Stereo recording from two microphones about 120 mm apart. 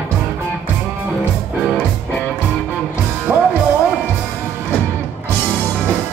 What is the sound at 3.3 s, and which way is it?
Music, 10° right (ahead or behind).